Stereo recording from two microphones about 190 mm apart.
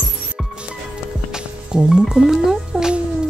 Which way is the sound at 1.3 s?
5° right (ahead or behind).